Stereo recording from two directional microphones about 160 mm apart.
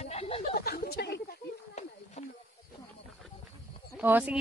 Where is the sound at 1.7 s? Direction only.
45° left (ahead or behind).